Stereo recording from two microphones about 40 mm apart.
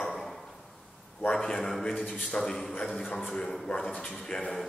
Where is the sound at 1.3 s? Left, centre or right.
Centre.